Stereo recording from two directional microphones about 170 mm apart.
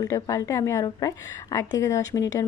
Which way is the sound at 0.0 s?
20° left (ahead or behind).